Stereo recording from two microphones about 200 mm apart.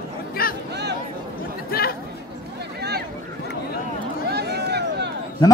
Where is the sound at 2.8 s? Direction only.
55° right (ahead or behind).